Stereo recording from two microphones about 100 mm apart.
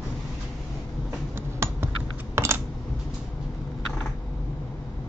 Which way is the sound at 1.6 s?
25° right (ahead or behind).